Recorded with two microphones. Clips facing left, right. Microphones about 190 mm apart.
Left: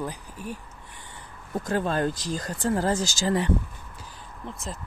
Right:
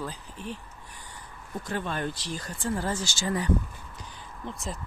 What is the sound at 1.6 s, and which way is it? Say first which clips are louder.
Speech: left 6 dB; 40° left (ahead or behind).